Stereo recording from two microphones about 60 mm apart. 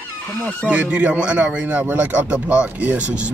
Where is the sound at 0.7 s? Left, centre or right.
Centre.